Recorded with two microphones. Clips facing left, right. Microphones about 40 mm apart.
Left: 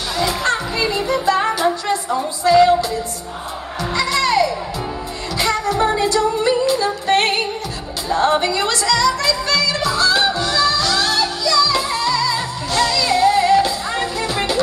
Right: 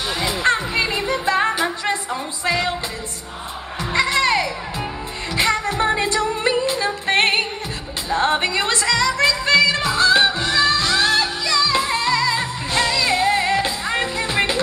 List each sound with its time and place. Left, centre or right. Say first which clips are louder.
0.2 s music: left 1 dB; right
3.9 s music: even; right